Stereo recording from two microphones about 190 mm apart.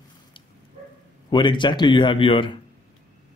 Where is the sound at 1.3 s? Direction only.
25° left (ahead or behind).